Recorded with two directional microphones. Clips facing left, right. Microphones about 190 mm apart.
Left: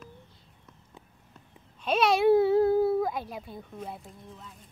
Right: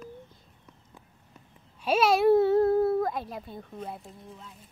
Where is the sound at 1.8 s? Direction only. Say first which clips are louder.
Right 1 dB; 5° right (ahead or behind).